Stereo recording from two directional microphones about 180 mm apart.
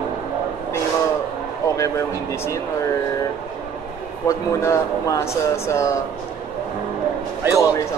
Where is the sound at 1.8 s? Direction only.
15° left (ahead or behind).